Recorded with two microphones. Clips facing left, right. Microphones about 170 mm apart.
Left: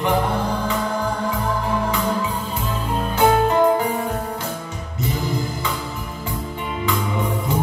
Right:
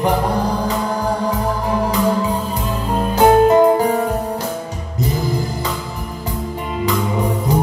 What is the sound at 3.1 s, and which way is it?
Music, 35° right (ahead or behind).